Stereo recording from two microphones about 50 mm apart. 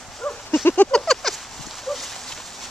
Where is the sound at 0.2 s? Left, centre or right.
Centre.